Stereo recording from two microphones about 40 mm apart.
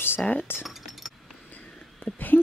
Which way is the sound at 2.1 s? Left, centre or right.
Left.